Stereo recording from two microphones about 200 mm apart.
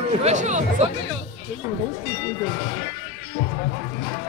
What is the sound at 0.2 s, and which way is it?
Speech, 35° right (ahead or behind).